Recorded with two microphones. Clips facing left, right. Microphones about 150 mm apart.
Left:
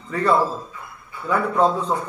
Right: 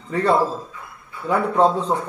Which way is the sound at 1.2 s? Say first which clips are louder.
Right 1 dB; 25° right (ahead or behind).